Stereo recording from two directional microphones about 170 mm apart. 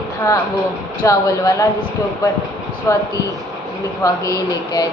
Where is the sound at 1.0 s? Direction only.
20° left (ahead or behind).